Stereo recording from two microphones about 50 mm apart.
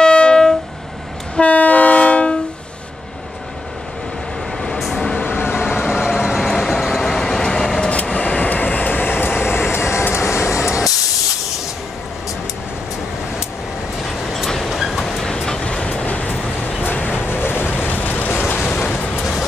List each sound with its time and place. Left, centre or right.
0.0 s train: centre
1.3 s train: left
4.6 s train: centre
8.1 s vehicle: left
10.6 s spray: centre
14.0 s vehicle: centre
14.8 s train: centre
16.1 s train: left
16.8 s vehicle: left
17.2 s waves: left
18.7 s a sound: left